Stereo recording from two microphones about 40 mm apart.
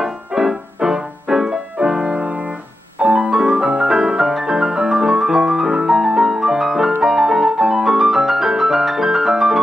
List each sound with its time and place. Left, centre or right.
0.0 s music: centre
3.0 s music: right
3.3 s music: centre